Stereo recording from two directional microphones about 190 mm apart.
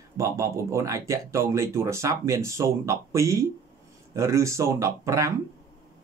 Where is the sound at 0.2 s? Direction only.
15° right (ahead or behind).